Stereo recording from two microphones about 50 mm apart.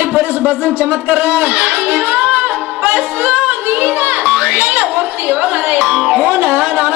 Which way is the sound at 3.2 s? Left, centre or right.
Right.